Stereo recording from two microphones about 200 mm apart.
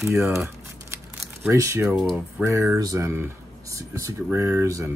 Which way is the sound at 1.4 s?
15° right (ahead or behind).